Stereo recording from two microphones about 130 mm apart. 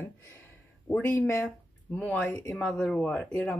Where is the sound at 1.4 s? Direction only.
10° left (ahead or behind).